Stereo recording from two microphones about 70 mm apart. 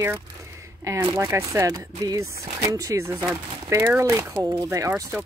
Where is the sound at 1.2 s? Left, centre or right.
Right.